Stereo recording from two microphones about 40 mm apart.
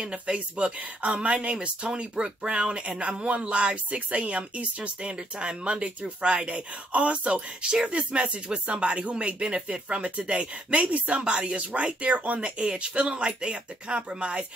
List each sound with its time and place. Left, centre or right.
0.0 s speech: right